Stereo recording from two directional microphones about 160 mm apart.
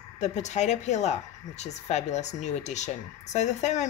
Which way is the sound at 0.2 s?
45° left (ahead or behind).